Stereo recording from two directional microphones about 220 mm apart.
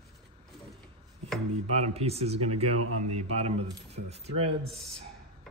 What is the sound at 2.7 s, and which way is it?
Speech, 90° right.